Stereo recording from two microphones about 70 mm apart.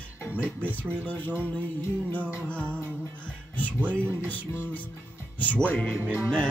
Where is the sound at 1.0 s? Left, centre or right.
Left.